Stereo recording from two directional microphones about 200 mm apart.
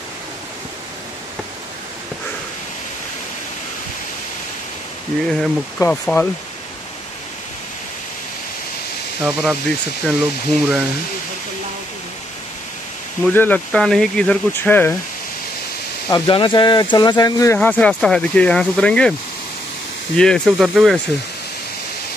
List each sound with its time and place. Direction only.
5.8 s speech: 10° left (ahead or behind)
9.2 s speech: centre (ahead or behind)
13.2 s speech: 10° left (ahead or behind)
16.1 s speech: 25° left (ahead or behind)
17.6 s speech: 5° left (ahead or behind)
20.2 s speech: 5° left (ahead or behind)